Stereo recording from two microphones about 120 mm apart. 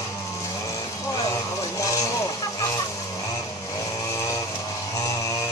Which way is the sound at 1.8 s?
30° left (ahead or behind).